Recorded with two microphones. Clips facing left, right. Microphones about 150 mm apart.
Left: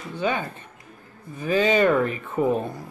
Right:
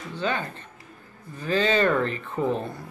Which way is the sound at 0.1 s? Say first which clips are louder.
Left 3 dB; 15° left (ahead or behind).